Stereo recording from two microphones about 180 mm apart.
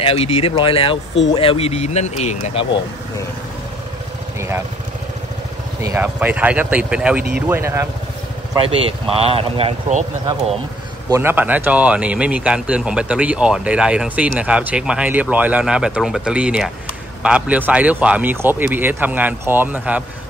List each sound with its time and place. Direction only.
0.0 s speech: 35° left (ahead or behind)
5.8 s speech: 15° right (ahead or behind)
8.5 s speech: 30° right (ahead or behind)
11.1 s speech: 15° right (ahead or behind)